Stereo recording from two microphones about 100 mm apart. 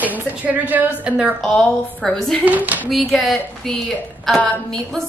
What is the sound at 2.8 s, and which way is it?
A woman's voice, centre (ahead or behind).